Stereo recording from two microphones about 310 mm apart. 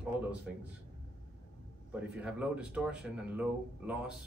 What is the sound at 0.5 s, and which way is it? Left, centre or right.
Speech, centre.